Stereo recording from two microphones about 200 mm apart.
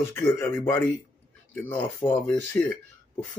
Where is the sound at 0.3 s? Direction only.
10° left (ahead or behind).